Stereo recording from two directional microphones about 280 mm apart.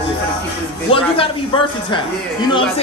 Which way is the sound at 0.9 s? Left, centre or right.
Centre.